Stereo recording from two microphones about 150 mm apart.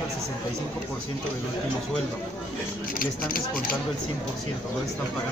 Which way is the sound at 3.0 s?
75° left (ahead or behind).